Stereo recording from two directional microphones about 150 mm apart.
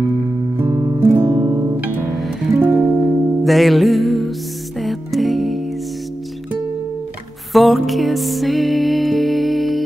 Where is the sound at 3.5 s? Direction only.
Centre (ahead or behind).